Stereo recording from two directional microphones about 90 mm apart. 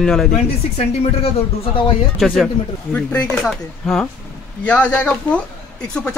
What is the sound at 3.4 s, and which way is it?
Speech, 5° left (ahead or behind).